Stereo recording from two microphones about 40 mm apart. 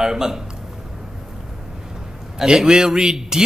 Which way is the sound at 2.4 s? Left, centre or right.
Centre.